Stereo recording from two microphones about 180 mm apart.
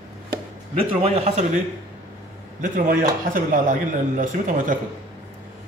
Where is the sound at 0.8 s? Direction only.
35° right (ahead or behind).